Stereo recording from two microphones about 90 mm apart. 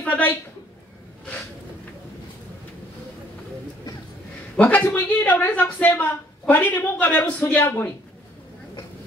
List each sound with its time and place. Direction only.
0.0 s a woman's voice: 15° left (ahead or behind)
4.6 s speech: 20° left (ahead or behind)